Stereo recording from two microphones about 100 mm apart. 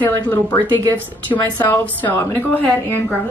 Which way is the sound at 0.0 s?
20° left (ahead or behind).